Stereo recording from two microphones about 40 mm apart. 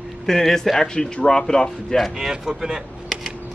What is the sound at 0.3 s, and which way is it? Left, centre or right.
Speech, centre.